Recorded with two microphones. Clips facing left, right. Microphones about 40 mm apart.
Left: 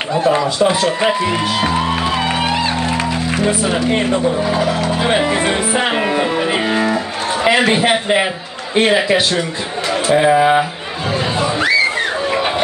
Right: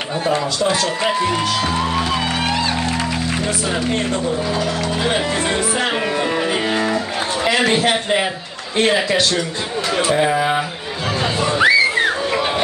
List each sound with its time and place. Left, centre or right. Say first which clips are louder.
0.6 s speech: left 4 dB; centre
6.7 s music: left 3 dB; centre
7.4 s a man's voice: left 3 dB; centre
11.6 s a sound: right 3 dB; centre